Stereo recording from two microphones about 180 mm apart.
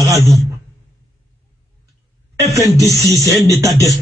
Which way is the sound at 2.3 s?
20° right (ahead or behind).